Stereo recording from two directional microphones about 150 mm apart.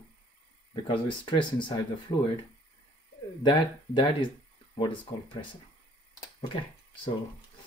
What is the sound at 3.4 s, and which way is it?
Speech, 35° left (ahead or behind).